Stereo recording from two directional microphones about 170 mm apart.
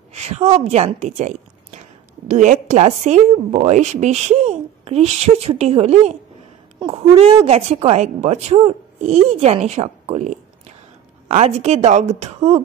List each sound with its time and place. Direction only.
0.1 s a woman's voice: 40° right (ahead or behind)